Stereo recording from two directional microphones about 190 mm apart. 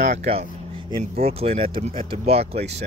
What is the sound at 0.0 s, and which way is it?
Speech, 35° right (ahead or behind).